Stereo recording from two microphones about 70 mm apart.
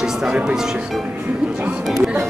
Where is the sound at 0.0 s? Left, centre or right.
Centre.